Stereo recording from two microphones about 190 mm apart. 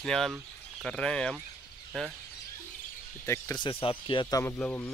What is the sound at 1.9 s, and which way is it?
Speech, 5° right (ahead or behind).